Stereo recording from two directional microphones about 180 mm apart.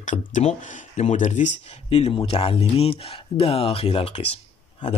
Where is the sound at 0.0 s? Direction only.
45° left (ahead or behind).